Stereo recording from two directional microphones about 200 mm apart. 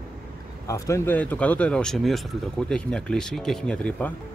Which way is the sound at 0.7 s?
15° left (ahead or behind).